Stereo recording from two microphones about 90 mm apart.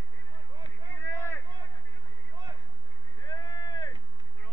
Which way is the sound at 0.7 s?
20° left (ahead or behind).